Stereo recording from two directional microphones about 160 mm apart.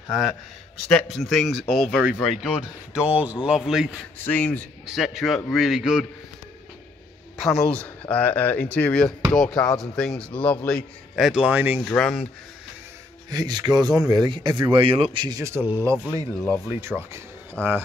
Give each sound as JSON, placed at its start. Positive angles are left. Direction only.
{"t": 0.8, "sound": "speech", "side_deg": 0}
{"t": 4.3, "sound": "speech", "side_deg": 10}
{"t": 4.8, "sound": "speech", "side_deg": 0}
{"t": 7.3, "sound": "speech", "side_deg": 0}
{"t": 11.1, "sound": "speech", "side_deg": -5}
{"t": 11.8, "sound": "speech", "side_deg": 5}
{"t": 13.3, "sound": "speech", "side_deg": -25}
{"t": 15.1, "sound": "speech", "side_deg": -25}
{"t": 16.3, "sound": "speech", "side_deg": 15}
{"t": 16.6, "sound": "speech", "side_deg": -15}